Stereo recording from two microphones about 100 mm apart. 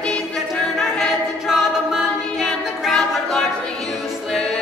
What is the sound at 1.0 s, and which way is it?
A capella, centre (ahead or behind).